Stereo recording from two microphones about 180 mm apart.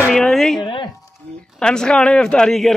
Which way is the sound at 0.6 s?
25° left (ahead or behind).